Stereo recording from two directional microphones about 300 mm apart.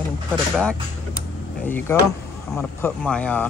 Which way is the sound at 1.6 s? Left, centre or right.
Centre.